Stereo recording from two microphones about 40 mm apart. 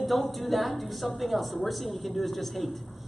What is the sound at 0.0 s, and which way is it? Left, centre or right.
A woman's voice, centre.